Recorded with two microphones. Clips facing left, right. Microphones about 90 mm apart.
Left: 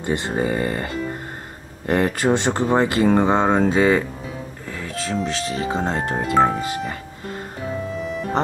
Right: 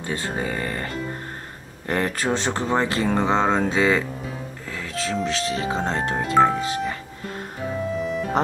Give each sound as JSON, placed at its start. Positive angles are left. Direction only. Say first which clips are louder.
{"t": 0.1, "sound": "speech", "louder": "left 5 dB", "side_deg": 20}
{"t": 7.9, "sound": "music", "louder": "right 1 dB", "side_deg": 0}